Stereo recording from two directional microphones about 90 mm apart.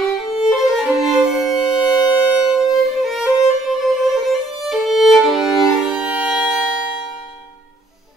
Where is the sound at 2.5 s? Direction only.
Centre (ahead or behind).